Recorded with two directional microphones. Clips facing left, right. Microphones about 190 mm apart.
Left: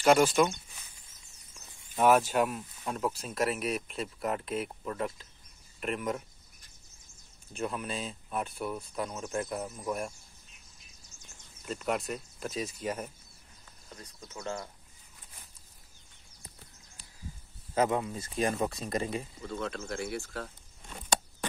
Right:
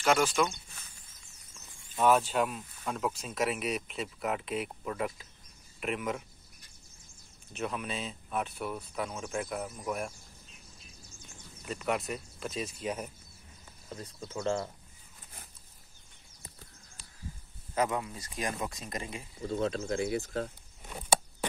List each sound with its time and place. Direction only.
1.8 s speech: 15° left (ahead or behind); by 6.2 s 5° right (ahead or behind)
7.5 s speech: centre (ahead or behind)
11.6 s speech: centre (ahead or behind)
13.9 s speech: 30° right (ahead or behind)
17.7 s speech: 30° left (ahead or behind)
19.4 s speech: 25° right (ahead or behind)